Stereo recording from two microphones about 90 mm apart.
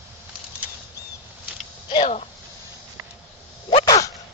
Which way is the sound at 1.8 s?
60° left (ahead or behind).